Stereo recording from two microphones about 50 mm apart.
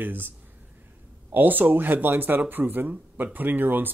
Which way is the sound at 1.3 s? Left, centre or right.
Right.